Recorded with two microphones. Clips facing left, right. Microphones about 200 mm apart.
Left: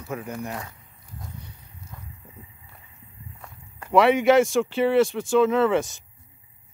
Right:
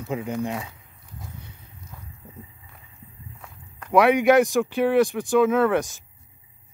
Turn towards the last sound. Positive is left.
turn(degrees=-15)  # may be behind; listen again after turning